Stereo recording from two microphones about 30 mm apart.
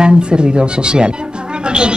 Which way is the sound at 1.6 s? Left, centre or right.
Right.